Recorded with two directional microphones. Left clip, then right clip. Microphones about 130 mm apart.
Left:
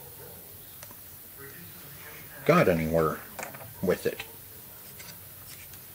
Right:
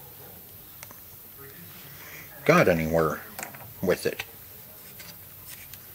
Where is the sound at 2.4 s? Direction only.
25° right (ahead or behind).